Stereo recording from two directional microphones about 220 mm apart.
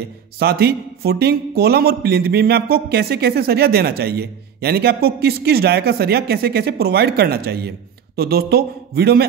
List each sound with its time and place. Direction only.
0.4 s a man's voice: 45° right (ahead or behind)